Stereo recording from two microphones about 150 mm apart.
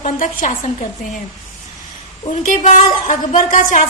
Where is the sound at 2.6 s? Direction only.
55° left (ahead or behind).